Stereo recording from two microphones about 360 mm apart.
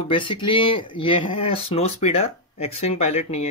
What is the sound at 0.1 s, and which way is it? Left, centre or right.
Speech, centre.